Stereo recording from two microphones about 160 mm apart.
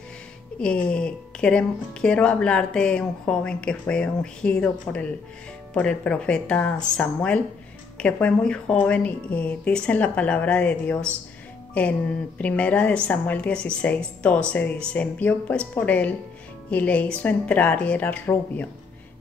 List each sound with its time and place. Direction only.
0.6 s a woman's voice: 5° left (ahead or behind)